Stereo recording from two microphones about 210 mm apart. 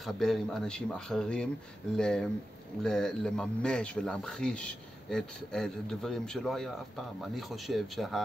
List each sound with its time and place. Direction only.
0.0 s speech: centre (ahead or behind)